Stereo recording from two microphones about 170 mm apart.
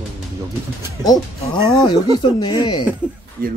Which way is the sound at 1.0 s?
25° left (ahead or behind).